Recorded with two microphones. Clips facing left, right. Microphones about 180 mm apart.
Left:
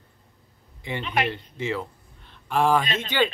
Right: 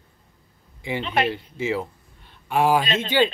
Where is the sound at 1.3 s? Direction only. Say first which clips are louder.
Right 3 dB; 10° right (ahead or behind).